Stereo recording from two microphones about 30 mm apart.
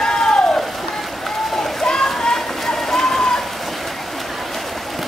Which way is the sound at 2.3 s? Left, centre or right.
Centre.